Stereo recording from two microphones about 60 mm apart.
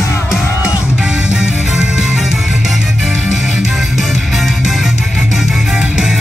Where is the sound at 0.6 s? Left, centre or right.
Centre.